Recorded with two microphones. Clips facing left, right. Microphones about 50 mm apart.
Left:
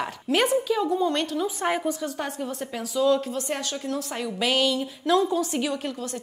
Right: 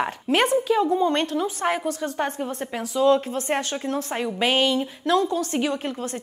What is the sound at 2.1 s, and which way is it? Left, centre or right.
A woman's voice, right.